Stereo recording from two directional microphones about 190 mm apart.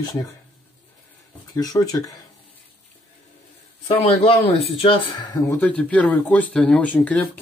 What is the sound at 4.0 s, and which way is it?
Speech, 30° left (ahead or behind).